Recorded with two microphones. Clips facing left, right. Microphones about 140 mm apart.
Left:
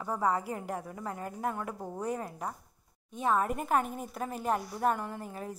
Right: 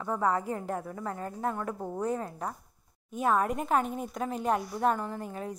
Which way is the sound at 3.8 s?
Centre (ahead or behind).